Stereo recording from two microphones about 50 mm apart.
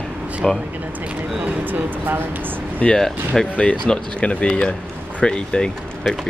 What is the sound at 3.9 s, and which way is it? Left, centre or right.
Speech, left.